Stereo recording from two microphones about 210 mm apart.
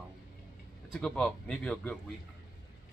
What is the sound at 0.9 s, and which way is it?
Speech, 5° left (ahead or behind).